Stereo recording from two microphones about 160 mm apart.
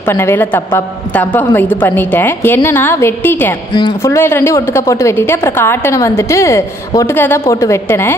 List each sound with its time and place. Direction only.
0.0 s a woman's voice: 15° left (ahead or behind)